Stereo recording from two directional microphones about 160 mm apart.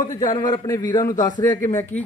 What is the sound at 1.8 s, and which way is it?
Speech, 10° left (ahead or behind).